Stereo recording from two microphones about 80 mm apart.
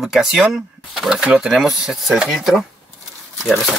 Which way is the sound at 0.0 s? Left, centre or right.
Centre.